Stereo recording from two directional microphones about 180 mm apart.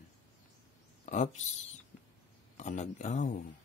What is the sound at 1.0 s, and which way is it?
Speech, 40° left (ahead or behind).